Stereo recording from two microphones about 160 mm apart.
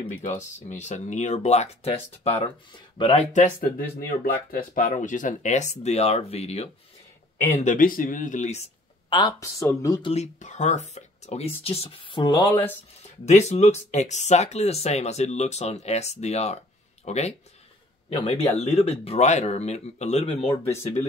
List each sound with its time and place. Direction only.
0.7 s speech: 45° left (ahead or behind)
3.3 s speech: 55° left (ahead or behind)
4.2 s speech: 65° left (ahead or behind); by 6.7 s 40° left (ahead or behind)
7.6 s speech: 55° left (ahead or behind)
9.4 s speech: 20° left (ahead or behind)
10.0 s speech: 45° left (ahead or behind)
13.2 s speech: 45° left (ahead or behind)
20.6 s speech: 15° left (ahead or behind)